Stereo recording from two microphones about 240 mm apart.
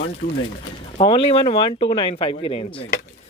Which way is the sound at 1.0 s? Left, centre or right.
Left.